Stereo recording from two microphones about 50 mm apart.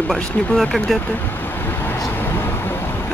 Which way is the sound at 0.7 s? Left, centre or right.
Centre.